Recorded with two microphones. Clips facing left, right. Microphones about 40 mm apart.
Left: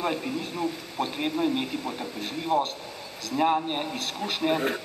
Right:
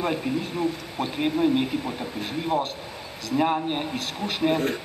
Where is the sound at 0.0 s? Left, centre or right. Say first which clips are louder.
Right 3 dB; centre.